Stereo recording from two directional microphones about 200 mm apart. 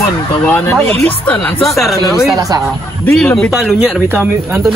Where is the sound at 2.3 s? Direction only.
20° right (ahead or behind).